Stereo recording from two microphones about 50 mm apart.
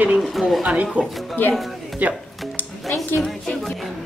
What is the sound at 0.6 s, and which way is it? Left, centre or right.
Speech, right.